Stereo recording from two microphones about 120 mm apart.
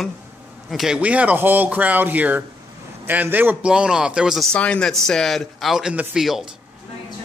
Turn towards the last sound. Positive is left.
turn(degrees=-5)  # may be behind; listen again after turning